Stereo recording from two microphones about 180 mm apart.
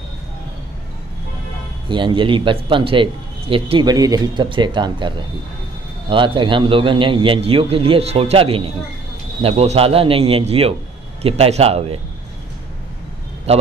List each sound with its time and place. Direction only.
1.9 s a man's voice: 25° right (ahead or behind)
13.5 s a man's voice: 35° right (ahead or behind)